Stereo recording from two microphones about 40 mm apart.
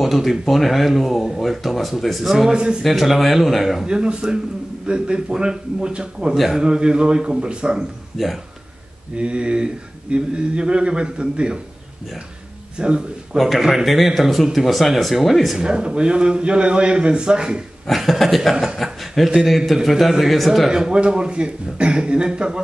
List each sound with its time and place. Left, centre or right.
0.0 s speech: centre
2.3 s a man's voice: centre
2.8 s speech: centre
3.8 s a man's voice: right
8.2 s a man's voice: centre
9.1 s a man's voice: right
12.7 s speech: right
13.4 s speech: centre
15.5 s a man's voice: right
17.8 s a man's voice: centre; by 22.6 s right